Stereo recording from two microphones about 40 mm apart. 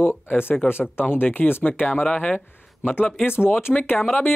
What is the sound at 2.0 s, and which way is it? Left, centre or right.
Speech, left.